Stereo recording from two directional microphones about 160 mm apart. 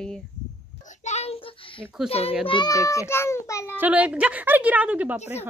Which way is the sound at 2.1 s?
40° left (ahead or behind).